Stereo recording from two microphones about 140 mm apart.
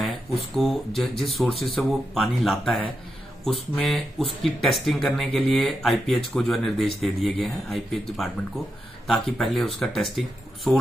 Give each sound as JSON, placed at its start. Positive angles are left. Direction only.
{"t": 0.6, "sound": "speech", "side_deg": 0}